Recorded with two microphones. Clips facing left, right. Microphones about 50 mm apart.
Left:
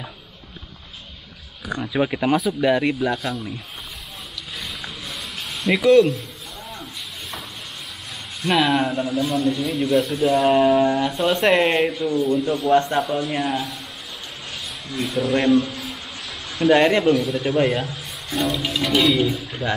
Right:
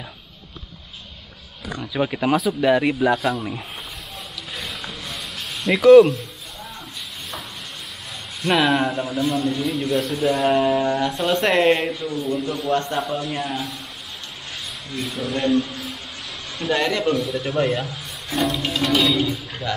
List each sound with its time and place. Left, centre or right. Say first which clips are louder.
1.8 s a man's voice: left 1 dB; centre
3.3 s speech: right 3 dB; right
4.6 s a sound: right 1 dB; centre
8.5 s a man's voice: even; centre
15.0 s speech: left 4 dB; centre
16.7 s speech: left 5 dB; left
17.0 s a man's voice: left 3 dB; centre